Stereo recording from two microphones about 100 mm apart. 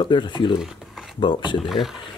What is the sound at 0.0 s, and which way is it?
Speech, 50° left (ahead or behind).